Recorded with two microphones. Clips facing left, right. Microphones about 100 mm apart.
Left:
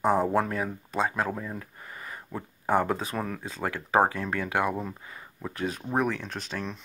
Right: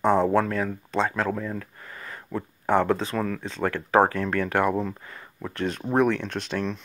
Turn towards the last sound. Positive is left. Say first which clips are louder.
# right 6 dB
turn(degrees=5)  # may be behind; listen again after turning